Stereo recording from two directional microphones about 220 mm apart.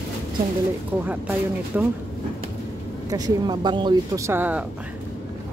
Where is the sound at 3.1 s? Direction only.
20° right (ahead or behind).